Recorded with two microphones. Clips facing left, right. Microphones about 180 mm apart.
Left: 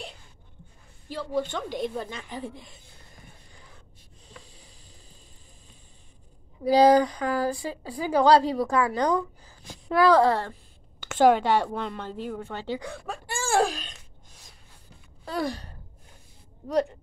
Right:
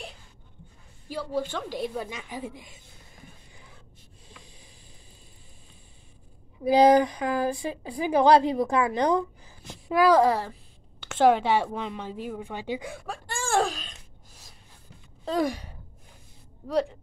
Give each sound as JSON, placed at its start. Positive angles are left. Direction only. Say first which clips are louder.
{"t": 1.0, "sound": "a woman's voice", "louder": "left 1 dB", "side_deg": -10}
{"t": 6.6, "sound": "a woman's voice", "louder": "even", "side_deg": -20}
{"t": 11.0, "sound": "a woman's voice", "louder": "left 1 dB", "side_deg": 0}
{"t": 12.9, "sound": "speech", "louder": "left 1 dB", "side_deg": 5}
{"t": 15.2, "sound": "a sound", "louder": "right 3 dB", "side_deg": -15}